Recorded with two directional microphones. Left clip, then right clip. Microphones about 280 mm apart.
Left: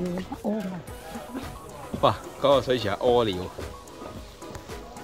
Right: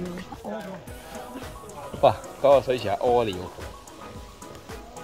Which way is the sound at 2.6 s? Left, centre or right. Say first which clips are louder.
Right 1 dB; centre.